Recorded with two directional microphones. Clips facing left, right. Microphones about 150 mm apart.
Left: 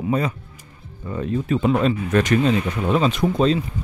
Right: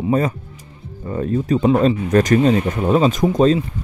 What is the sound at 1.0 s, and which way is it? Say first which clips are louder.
Speech: right 4 dB; 40° right (ahead or behind).